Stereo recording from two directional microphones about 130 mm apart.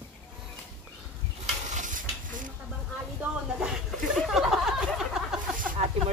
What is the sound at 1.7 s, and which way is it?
Stir, 85° right.